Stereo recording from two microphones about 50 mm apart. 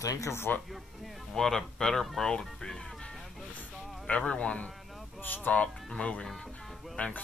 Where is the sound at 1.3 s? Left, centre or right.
Centre.